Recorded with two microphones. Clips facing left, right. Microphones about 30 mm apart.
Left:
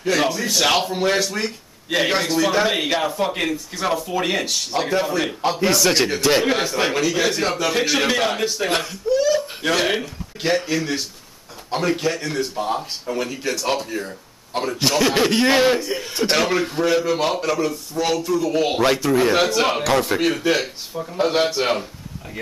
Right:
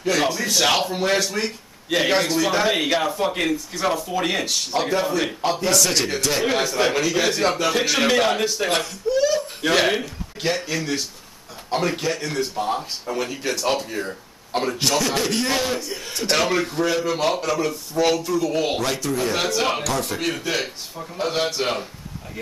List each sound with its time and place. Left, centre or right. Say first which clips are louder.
0.0 s speech: left 1 dB; centre
13.8 s speech: even; centre
14.8 s a man's voice: left 6 dB; centre
18.8 s a man's voice: left 6 dB; left
20.9 s a man's voice: left 6 dB; centre